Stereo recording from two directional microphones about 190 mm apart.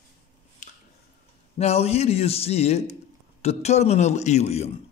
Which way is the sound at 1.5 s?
35° left (ahead or behind).